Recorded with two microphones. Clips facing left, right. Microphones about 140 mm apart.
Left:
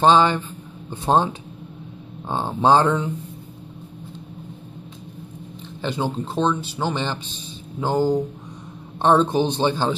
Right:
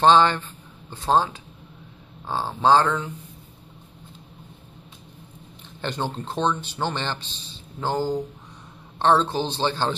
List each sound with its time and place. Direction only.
0.0 s speech: 10° left (ahead or behind)
0.8 s speech: 20° left (ahead or behind)
5.8 s speech: 5° left (ahead or behind)